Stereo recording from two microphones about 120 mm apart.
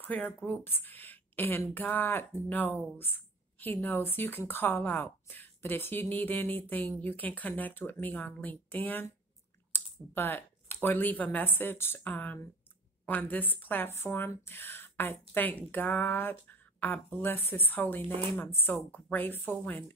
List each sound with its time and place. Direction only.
0.0 s speech: 15° left (ahead or behind)
9.7 s typing: 20° left (ahead or behind)
10.1 s speech: 15° left (ahead or behind)